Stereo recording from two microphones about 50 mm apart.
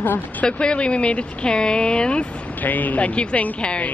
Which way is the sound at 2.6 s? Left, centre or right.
Left.